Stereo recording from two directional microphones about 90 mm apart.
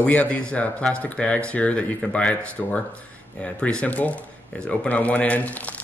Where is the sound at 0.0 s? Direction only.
15° left (ahead or behind).